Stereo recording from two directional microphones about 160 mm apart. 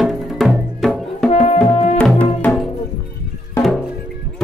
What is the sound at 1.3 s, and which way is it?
Music, 40° left (ahead or behind).